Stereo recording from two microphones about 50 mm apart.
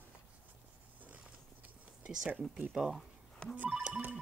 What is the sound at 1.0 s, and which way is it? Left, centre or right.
Biting, right.